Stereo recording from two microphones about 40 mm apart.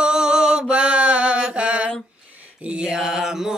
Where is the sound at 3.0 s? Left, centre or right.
Centre.